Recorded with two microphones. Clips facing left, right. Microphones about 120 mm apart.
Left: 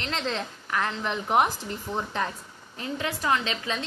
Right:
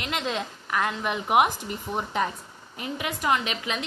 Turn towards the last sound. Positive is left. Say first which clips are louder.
# even
turn(degrees=-15)  # may be behind; listen again after turning